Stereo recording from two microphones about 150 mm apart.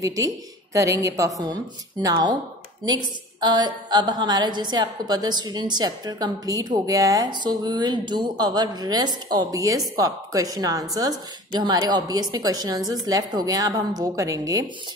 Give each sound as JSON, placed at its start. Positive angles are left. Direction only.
{"t": 0.0, "sound": "a woman's voice", "side_deg": -20}